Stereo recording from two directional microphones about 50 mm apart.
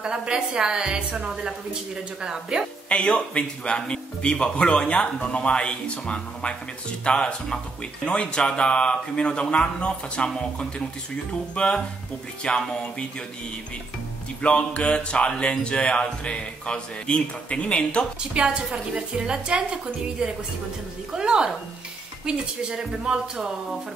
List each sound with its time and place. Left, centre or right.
0.0 s a woman's voice: centre
2.9 s speech: left
14.4 s speech: left
18.3 s a woman's voice: right